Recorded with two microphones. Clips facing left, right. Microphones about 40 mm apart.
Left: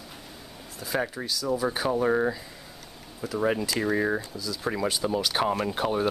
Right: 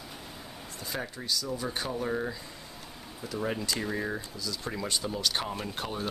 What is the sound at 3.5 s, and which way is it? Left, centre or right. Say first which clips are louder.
Speech: left 6 dB; centre.